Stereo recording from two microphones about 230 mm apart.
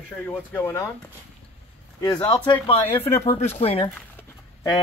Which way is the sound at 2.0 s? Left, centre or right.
Centre.